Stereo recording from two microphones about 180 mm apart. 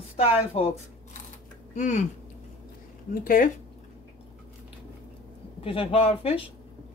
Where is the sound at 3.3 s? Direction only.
50° left (ahead or behind).